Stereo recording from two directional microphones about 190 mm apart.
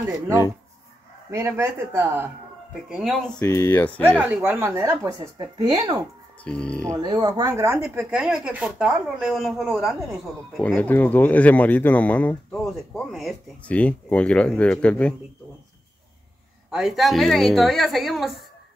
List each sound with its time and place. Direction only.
1.3 s speech: 15° right (ahead or behind)
2.9 s speech: centre (ahead or behind)
3.4 s speech: 15° left (ahead or behind)
4.2 s speech: 10° right (ahead or behind)
6.4 s speech: 5° left (ahead or behind)
6.9 s speech: 20° right (ahead or behind); by 15.1 s 5° left (ahead or behind)
16.7 s speech: centre (ahead or behind)